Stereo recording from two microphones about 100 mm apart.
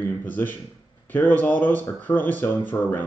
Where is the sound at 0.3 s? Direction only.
20° left (ahead or behind).